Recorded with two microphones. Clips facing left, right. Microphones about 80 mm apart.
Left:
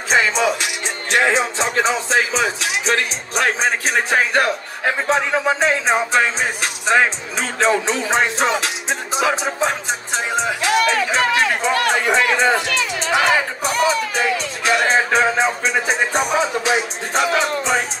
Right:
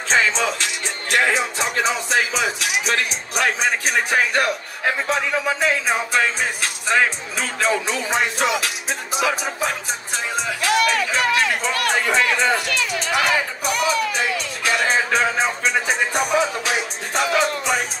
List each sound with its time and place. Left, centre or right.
0.1 s music: centre; by 9.7 s left
10.8 s speech: left
14.8 s music: left
16.1 s music: left